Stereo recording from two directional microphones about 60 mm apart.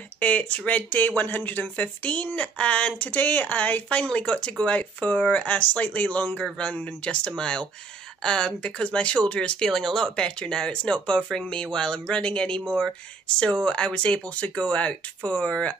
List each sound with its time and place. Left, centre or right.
0.2 s speech: left
13.7 s speech: centre